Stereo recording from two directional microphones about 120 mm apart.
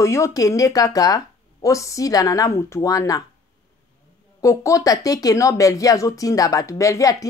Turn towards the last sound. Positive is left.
turn(degrees=25)  # may be behind; listen again after turning